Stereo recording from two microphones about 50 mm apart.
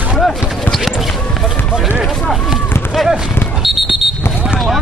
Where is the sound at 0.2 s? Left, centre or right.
Centre.